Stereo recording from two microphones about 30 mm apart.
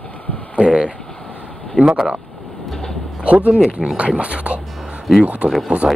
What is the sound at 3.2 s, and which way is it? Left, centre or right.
Speech, right.